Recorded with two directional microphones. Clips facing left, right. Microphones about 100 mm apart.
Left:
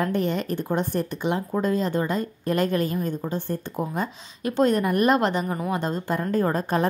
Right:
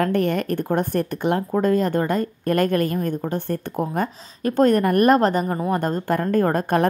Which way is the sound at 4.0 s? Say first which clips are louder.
Right 4 dB; 50° right (ahead or behind).